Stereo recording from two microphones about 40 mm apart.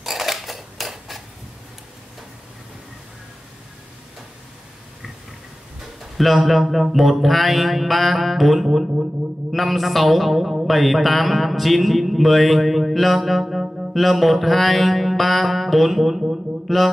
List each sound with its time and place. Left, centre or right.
0.0 s a sound: centre
6.1 s speech: centre
13.6 s music: centre
13.9 s mantra: centre